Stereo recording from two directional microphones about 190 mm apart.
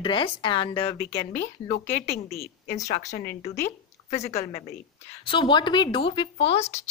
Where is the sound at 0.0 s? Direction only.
25° left (ahead or behind).